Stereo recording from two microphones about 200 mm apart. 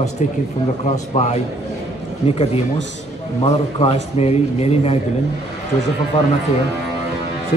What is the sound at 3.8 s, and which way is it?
A man's voice, 30° left (ahead or behind).